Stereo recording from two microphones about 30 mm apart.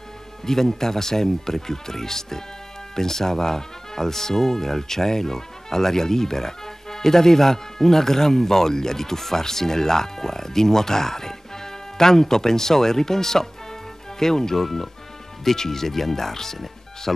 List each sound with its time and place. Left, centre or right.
0.5 s speech: centre